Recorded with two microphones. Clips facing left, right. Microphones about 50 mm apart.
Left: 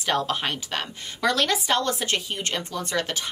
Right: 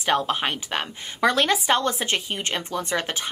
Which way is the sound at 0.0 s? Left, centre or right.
Right.